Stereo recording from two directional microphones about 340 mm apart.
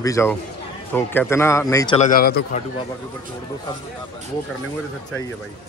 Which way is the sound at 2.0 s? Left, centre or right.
Left.